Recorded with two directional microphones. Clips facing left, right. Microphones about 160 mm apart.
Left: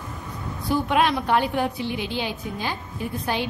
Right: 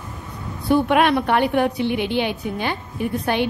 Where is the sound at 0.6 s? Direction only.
60° right (ahead or behind).